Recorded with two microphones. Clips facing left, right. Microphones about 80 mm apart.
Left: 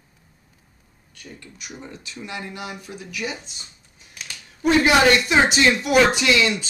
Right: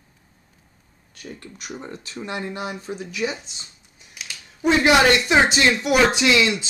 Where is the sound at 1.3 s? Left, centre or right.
Right.